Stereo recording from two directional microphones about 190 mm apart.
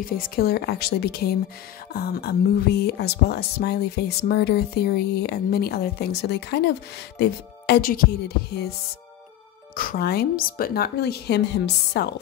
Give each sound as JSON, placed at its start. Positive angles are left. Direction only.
{"t": 0.0, "sound": "speech", "side_deg": 50}
{"t": 9.8, "sound": "speech", "side_deg": 50}